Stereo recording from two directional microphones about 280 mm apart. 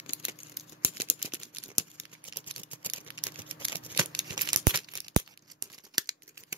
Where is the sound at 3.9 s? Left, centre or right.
Centre.